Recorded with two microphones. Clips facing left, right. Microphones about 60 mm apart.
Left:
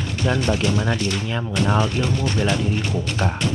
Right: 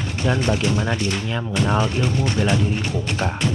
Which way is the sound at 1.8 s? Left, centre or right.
Right.